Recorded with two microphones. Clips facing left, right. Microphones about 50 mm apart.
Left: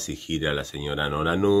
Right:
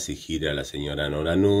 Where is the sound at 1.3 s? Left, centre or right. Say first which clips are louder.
Right 2 dB; centre.